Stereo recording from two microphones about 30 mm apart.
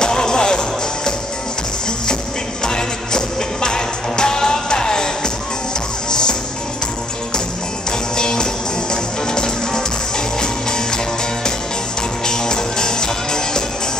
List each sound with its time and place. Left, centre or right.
0.0 s music: left
2.6 s music: left
8.2 s music: left
12.3 s music: left